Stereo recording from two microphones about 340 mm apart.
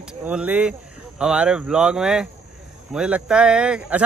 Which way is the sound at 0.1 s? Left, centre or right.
Centre.